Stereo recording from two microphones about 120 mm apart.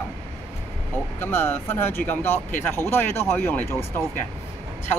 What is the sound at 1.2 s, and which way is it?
Speech, 20° left (ahead or behind).